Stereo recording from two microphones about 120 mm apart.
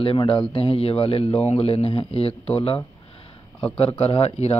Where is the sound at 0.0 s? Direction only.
45° left (ahead or behind).